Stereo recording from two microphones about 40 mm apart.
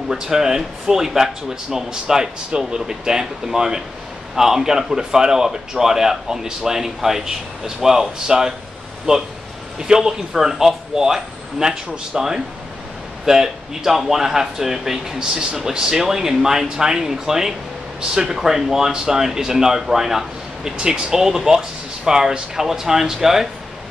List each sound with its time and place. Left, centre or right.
0.1 s speech: centre
20.7 s speech: right